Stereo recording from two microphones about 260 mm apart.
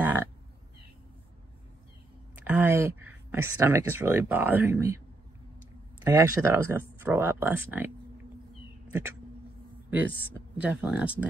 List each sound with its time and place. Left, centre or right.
0.0 s a sound: centre
2.3 s speech: centre
6.0 s speech: centre
10.6 s speech: centre